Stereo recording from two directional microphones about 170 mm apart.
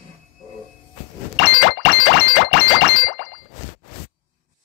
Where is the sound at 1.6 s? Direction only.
70° left (ahead or behind).